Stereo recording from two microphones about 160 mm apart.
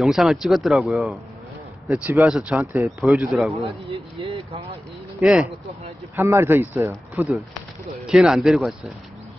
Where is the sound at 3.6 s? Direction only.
35° right (ahead or behind).